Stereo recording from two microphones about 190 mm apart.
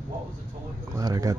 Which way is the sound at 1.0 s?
20° right (ahead or behind).